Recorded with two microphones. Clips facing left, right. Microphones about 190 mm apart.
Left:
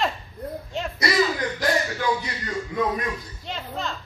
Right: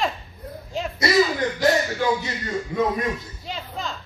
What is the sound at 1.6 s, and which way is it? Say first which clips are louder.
A man's voice: right 5 dB; 25° right (ahead or behind).